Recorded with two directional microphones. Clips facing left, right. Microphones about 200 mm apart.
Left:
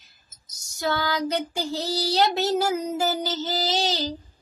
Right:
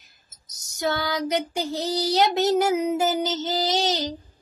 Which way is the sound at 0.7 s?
20° right (ahead or behind).